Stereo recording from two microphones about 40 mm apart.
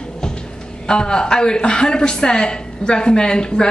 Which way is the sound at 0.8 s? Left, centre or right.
Centre.